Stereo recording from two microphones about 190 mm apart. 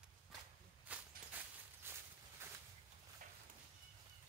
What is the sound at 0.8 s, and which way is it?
Walk, 10° right (ahead or behind).